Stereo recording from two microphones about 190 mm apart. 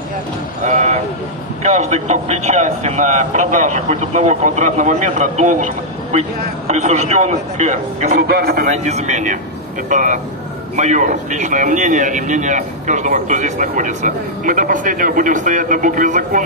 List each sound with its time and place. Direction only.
0.7 s a sound: 40° right (ahead or behind)
1.6 s a man's voice: 35° right (ahead or behind)
6.7 s a man's voice: 35° right (ahead or behind)
8.3 s speech: 55° right (ahead or behind)
8.6 s a man's voice: 35° right (ahead or behind)